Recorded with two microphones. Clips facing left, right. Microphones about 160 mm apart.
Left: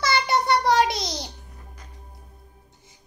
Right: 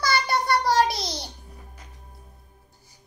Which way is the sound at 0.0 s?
20° left (ahead or behind).